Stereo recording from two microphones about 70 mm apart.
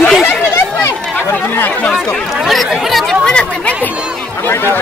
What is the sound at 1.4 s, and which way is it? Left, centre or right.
Speech, left.